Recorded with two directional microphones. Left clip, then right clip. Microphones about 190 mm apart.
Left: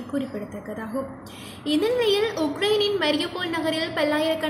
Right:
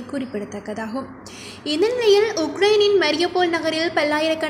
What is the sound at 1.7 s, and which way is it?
A woman's voice, 30° right (ahead or behind).